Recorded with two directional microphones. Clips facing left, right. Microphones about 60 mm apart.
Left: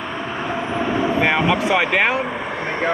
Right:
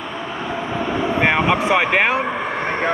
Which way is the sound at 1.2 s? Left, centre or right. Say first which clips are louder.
Right 3 dB; right.